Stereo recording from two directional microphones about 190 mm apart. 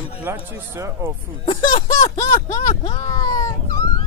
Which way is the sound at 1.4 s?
25° left (ahead or behind).